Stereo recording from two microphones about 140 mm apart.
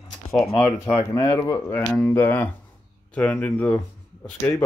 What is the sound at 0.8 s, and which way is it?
Speech, 20° left (ahead or behind).